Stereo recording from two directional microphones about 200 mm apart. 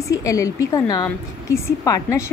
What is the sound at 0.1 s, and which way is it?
A woman's voice, 15° left (ahead or behind).